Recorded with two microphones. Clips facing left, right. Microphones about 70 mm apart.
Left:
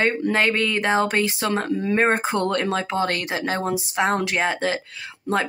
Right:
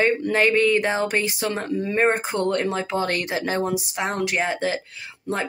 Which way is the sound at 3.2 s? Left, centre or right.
Left.